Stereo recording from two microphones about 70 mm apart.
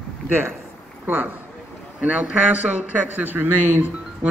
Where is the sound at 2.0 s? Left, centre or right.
Right.